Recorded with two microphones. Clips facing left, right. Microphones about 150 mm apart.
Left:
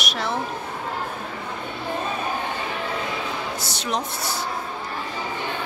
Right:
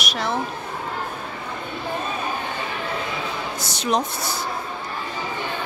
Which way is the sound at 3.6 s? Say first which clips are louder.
Right 8 dB; 15° right (ahead or behind).